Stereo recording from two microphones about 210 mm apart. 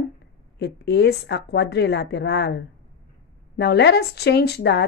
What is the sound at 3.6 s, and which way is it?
A woman's voice, 50° left (ahead or behind).